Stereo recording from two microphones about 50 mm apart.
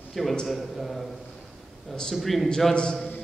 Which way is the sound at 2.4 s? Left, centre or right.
Centre.